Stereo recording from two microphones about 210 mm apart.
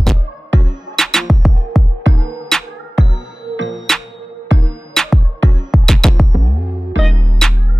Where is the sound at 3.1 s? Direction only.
65° right (ahead or behind).